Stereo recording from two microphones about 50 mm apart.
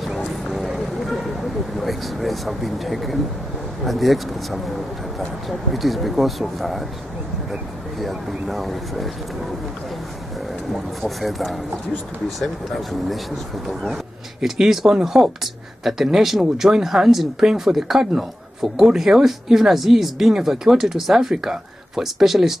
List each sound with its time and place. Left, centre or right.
0.0 s vehicle: centre
3.8 s speech: centre
8.0 s speech: centre
11.0 s speech: centre
14.4 s speech: centre